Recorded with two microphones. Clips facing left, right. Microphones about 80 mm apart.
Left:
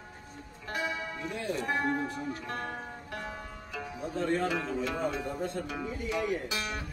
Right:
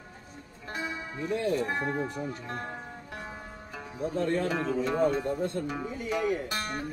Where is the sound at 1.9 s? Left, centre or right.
Centre.